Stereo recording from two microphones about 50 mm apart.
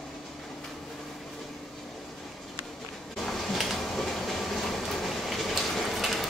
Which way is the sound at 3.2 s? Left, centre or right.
Centre.